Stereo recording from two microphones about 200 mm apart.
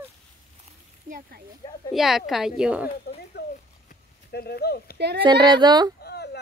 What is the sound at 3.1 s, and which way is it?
Speech, 50° left (ahead or behind).